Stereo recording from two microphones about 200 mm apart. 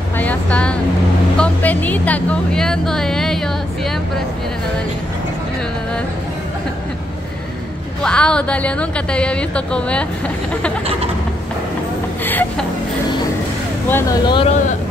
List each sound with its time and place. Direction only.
0.2 s vehicle: 5° left (ahead or behind)
1.4 s speech: 10° left (ahead or behind)
8.0 s a woman's voice: 5° left (ahead or behind)
12.3 s speech: 10° left (ahead or behind)
13.8 s speech: 10° left (ahead or behind)
14.2 s speech: 25° left (ahead or behind)